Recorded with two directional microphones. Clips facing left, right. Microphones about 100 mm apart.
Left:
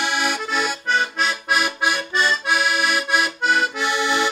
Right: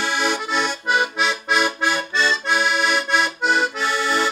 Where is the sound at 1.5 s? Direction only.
10° left (ahead or behind).